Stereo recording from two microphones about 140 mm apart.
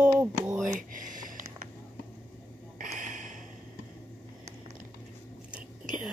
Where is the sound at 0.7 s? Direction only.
70° right (ahead or behind).